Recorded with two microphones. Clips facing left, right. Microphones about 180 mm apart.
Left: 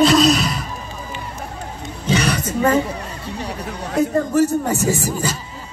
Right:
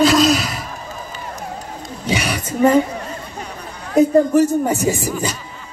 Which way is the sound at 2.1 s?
10° right (ahead or behind).